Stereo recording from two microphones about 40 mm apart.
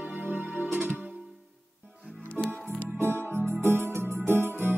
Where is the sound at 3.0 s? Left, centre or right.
Right.